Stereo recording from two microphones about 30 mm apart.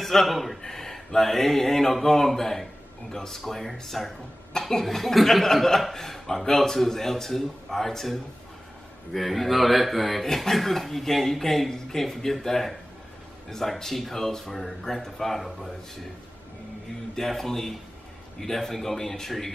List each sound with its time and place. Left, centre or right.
0.0 s speech: centre
0.6 s a man's voice: centre
4.8 s a man's voice: centre
17.1 s a man's voice: centre